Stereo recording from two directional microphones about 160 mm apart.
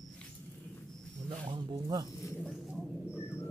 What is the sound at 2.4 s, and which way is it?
Bird, centre (ahead or behind).